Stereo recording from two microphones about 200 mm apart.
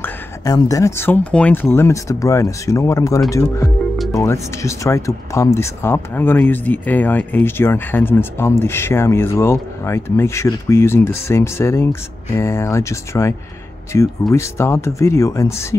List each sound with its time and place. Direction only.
0.0 s speech: 15° left (ahead or behind)